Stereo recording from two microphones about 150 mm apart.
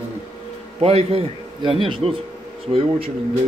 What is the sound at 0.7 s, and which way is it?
A man's voice, 40° right (ahead or behind).